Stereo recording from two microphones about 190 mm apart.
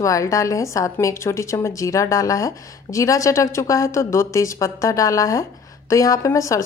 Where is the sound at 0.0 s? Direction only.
15° left (ahead or behind).